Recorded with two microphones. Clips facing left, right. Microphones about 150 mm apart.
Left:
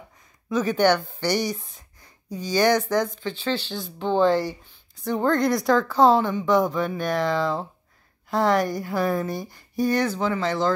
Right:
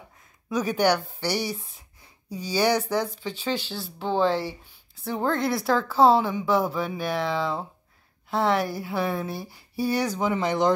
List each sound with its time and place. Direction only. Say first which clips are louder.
0.5 s speech: left 3 dB; 10° right (ahead or behind)